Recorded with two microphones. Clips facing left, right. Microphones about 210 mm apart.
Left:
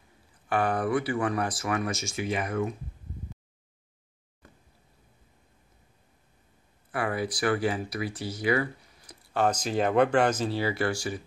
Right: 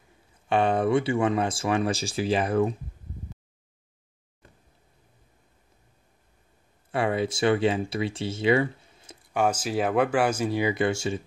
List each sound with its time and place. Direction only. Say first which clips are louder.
0.5 s speech: right 4 dB; 25° right (ahead or behind)
6.9 s speech: right 4 dB; 25° right (ahead or behind)
9.3 s speech: right 1 dB; 10° right (ahead or behind); by 11.2 s 25° right (ahead or behind)